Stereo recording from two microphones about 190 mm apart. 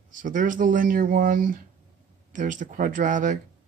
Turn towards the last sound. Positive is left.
turn(degrees=-45)  # may be behind; listen again after turning